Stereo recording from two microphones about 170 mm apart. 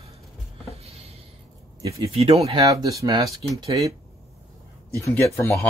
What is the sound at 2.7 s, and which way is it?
Speech, 20° right (ahead or behind).